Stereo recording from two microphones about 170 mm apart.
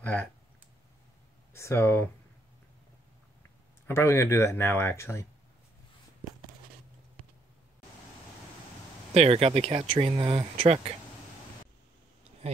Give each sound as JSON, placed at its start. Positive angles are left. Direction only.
{"t": 1.5, "sound": "speech", "side_deg": 15}
{"t": 3.8, "sound": "speech", "side_deg": 15}
{"t": 9.1, "sound": "speech", "side_deg": -35}